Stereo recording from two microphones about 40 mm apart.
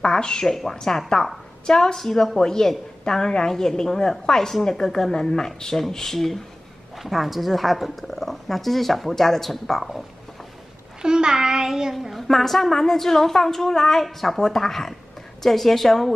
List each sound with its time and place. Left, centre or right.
0.0 s a woman's voice: centre
7.0 s speech: centre
11.0 s child singing: centre
11.9 s a woman's voice: centre